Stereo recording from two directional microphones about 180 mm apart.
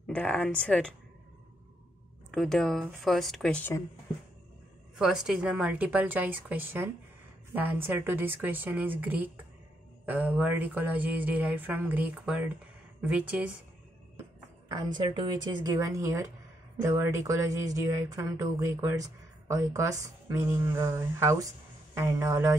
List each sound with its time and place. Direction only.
0.0 s speech: 5° left (ahead or behind)
2.3 s a woman's voice: centre (ahead or behind)
4.9 s speech: centre (ahead or behind)
14.7 s speech: 20° right (ahead or behind)